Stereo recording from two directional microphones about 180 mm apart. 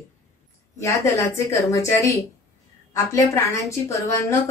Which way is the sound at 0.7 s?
15° left (ahead or behind).